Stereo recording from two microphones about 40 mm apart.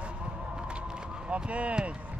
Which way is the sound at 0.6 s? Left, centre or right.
Right.